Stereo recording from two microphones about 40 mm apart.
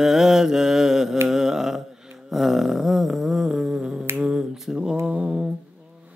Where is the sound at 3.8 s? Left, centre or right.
Right.